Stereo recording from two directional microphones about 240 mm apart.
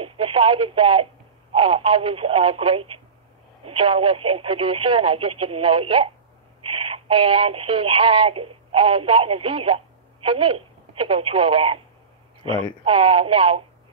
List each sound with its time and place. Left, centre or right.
0.0 s radio: right
1.5 s speech: right
12.8 s speech: right